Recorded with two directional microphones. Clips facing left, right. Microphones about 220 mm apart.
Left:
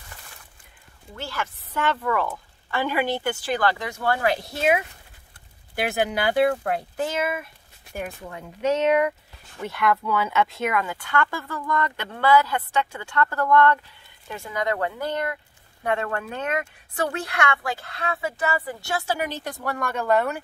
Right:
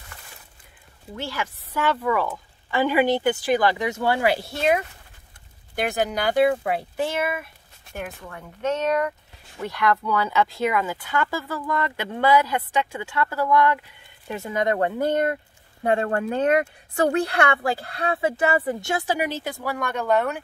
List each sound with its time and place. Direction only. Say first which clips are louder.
1.1 s speech: right 2 dB; 10° right (ahead or behind); by 4.8 s 5° left (ahead or behind)
6.0 s speech: right 2 dB; centre (ahead or behind)
8.3 s speech: left 3 dB; 15° left (ahead or behind); by 13.7 s 10° right (ahead or behind)
14.3 s speech: right 3 dB; 20° right (ahead or behind); by 20.4 s centre (ahead or behind)